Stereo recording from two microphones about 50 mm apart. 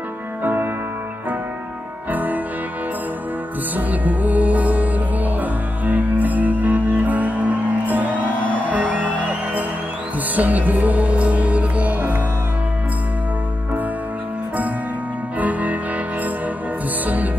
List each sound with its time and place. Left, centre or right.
0.4 s music: right
2.0 s music: right
3.7 s music: right
15.3 s music: right
17.0 s music: right